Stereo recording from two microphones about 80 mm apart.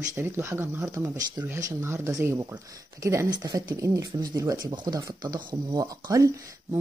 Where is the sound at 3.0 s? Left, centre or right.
Right.